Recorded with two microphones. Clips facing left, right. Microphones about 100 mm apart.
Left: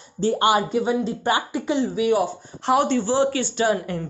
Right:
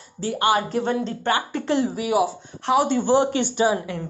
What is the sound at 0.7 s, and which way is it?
Speech, 5° left (ahead or behind).